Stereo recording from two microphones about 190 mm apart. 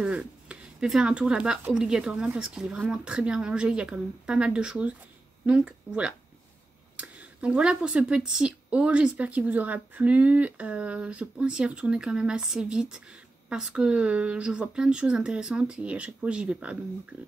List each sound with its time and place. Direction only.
0.0 s speech: 5° right (ahead or behind)
17.1 s music: 10° right (ahead or behind)